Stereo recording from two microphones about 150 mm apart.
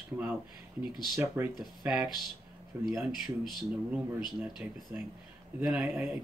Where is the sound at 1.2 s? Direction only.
15° right (ahead or behind).